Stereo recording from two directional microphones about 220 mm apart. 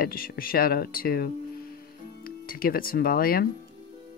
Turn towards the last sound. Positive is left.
turn(degrees=40)  # may be behind; listen again after turning